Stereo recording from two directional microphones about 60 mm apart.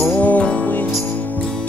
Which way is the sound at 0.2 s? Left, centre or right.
Left.